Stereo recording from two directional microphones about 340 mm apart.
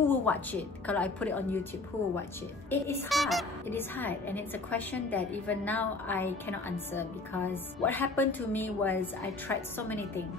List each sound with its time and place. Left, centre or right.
0.1 s speech: centre
2.7 s speech: centre